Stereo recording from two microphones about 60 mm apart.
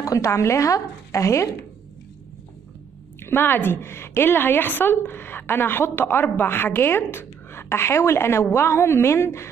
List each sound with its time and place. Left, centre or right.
0.0 s speech: left
3.2 s a woman's voice: left
3.8 s a woman's voice: left